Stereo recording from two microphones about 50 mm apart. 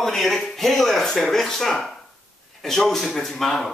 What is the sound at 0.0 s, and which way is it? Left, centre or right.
Speech, centre.